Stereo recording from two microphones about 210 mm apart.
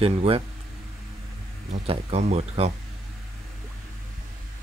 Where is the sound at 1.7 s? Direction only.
30° right (ahead or behind).